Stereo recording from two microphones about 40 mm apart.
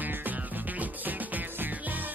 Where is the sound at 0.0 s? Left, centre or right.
Right.